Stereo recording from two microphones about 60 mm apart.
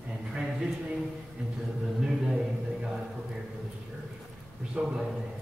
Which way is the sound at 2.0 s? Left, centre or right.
Centre.